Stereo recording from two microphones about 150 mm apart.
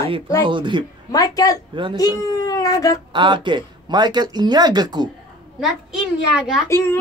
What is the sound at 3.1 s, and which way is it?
Speech, 30° right (ahead or behind).